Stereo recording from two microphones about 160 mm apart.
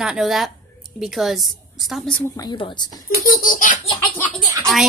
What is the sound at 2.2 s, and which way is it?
Speech, 20° left (ahead or behind).